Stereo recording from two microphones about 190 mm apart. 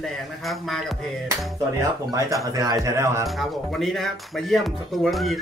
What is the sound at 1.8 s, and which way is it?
Speech, 15° right (ahead or behind).